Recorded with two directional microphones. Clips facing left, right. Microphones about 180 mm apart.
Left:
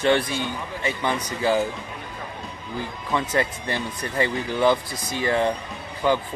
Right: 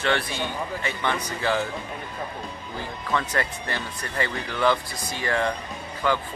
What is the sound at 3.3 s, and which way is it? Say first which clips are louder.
Speech: left 4 dB; 15° left (ahead or behind).